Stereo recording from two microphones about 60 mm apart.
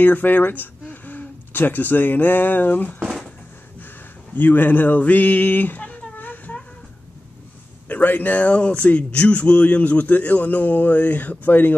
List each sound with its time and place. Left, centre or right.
0.0 s speech: left
3.0 s a sound: centre
4.3 s speech: left
7.9 s a man's voice: left